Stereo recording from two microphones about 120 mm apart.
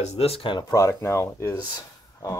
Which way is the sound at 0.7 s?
25° left (ahead or behind).